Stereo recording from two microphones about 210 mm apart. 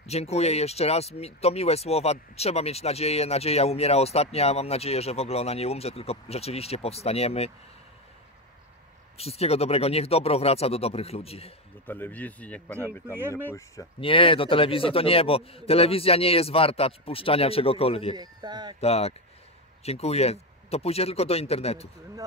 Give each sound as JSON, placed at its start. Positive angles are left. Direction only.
{"t": 0.0, "sound": "speech", "side_deg": 30}
{"t": 9.2, "sound": "speech", "side_deg": 30}
{"t": 11.8, "sound": "speech", "side_deg": 10}
{"t": 13.9, "sound": "speech", "side_deg": 25}
{"t": 18.1, "sound": "speech", "side_deg": -20}
{"t": 18.8, "sound": "speech", "side_deg": 30}